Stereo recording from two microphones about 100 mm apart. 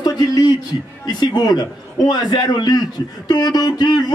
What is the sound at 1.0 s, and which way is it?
Speech, 45° left (ahead or behind).